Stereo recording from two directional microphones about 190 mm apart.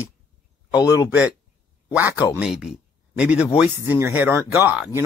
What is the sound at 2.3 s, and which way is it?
Speech, 5° right (ahead or behind).